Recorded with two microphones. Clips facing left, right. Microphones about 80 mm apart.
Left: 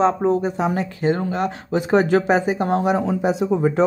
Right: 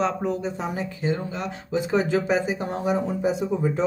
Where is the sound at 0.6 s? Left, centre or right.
Left.